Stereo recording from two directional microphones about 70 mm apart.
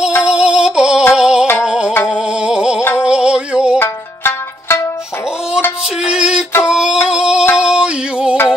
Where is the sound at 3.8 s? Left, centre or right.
Left.